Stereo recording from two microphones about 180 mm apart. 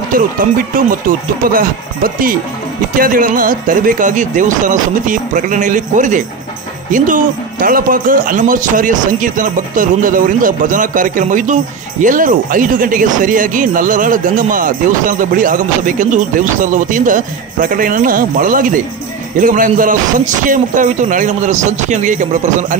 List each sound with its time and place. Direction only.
0.7 s a man's voice: 50° right (ahead or behind)